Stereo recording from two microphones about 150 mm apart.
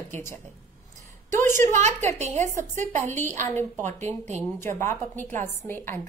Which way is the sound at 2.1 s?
50° right (ahead or behind).